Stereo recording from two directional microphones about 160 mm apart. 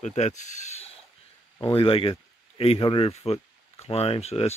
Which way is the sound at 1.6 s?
35° left (ahead or behind).